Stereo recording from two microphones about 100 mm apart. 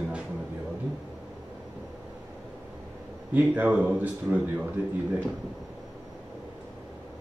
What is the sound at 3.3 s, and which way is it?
Speech, 15° right (ahead or behind).